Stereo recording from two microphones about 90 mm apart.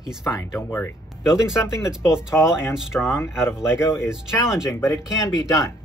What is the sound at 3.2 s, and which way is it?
Speech, 30° left (ahead or behind).